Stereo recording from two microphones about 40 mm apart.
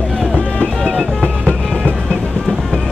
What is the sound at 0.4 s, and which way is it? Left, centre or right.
Music, left.